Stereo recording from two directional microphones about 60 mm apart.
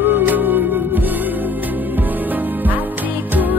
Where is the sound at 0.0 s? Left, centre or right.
Right.